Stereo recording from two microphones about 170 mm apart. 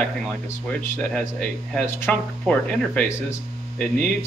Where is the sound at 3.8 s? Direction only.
5° left (ahead or behind).